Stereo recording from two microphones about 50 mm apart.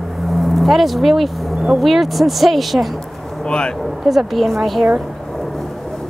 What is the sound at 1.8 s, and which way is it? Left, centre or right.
Speech, centre.